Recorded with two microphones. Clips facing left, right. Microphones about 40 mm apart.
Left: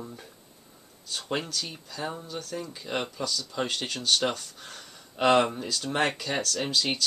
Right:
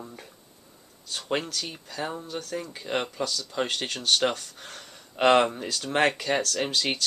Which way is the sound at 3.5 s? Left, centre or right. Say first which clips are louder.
Right 2 dB; right.